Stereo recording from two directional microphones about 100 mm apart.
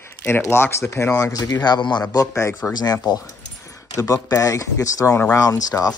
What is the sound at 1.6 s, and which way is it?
Speech, 45° left (ahead or behind).